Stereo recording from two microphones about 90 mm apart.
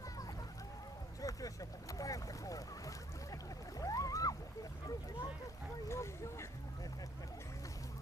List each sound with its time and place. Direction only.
1.2 s boat: 40° left (ahead or behind)
5.9 s speech: 30° left (ahead or behind)